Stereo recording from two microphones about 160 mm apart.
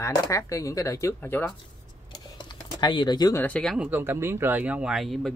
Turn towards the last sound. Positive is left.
turn(degrees=0)  # may be behind; listen again after turning